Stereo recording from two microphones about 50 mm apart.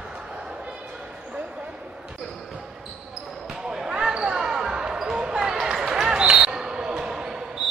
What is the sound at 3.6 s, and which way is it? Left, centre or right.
Basketball bounce, centre.